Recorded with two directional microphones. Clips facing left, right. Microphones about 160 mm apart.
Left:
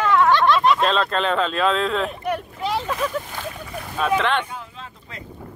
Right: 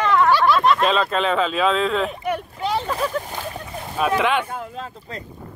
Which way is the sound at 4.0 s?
10° right (ahead or behind).